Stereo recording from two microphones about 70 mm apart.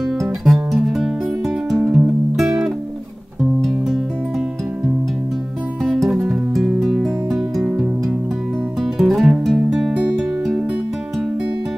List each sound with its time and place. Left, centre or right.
0.5 s music: centre
5.9 s music: centre
8.8 s music: centre
9.9 s music: centre